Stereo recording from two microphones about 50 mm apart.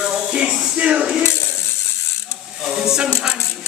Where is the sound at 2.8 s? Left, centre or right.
Centre.